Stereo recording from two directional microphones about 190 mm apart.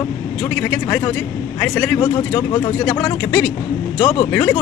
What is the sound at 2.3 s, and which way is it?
Speech, 20° left (ahead or behind).